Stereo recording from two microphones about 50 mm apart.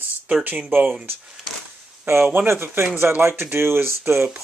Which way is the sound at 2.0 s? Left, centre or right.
Right.